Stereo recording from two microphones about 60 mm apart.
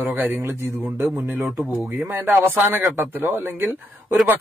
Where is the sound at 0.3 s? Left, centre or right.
Right.